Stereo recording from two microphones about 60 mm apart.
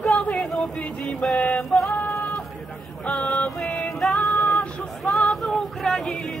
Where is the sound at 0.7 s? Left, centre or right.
Centre.